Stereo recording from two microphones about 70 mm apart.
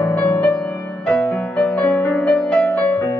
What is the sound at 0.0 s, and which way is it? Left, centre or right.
Music, left.